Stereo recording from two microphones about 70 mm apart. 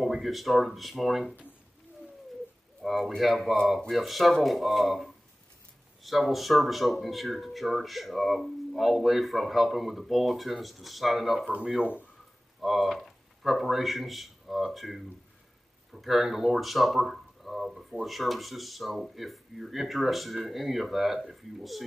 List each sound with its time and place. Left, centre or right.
0.0 s speech: centre
2.8 s a sound: centre
3.2 s speech: centre
11.5 s speech: centre
12.6 s speech: centre